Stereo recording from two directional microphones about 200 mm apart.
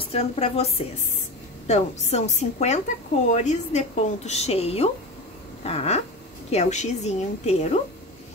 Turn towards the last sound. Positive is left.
turn(degrees=35)  # may be behind; listen again after turning